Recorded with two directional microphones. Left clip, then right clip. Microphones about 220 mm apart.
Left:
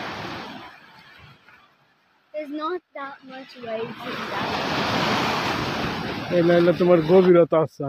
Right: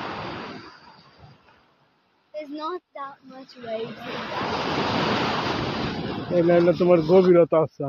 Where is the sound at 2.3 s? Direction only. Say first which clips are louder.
Left 3 dB; 50° left (ahead or behind).